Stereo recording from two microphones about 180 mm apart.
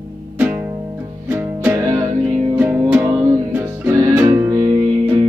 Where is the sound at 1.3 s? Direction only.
10° right (ahead or behind).